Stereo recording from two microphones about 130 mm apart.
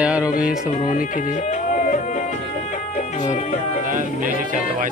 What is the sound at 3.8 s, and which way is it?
Music, 90° right.